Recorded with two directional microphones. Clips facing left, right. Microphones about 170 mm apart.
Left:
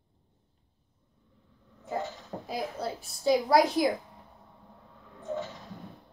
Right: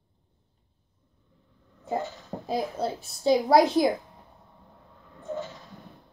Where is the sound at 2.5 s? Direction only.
25° right (ahead or behind).